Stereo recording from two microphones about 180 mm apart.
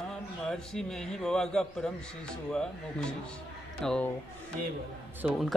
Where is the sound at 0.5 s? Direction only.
5° left (ahead or behind).